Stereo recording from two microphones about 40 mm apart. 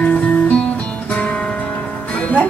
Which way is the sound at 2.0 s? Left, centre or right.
Left.